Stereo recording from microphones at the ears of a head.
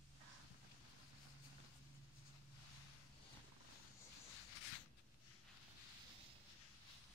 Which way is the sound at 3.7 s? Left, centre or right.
Left.